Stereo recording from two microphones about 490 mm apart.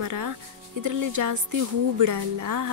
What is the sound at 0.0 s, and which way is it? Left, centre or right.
Speech, right.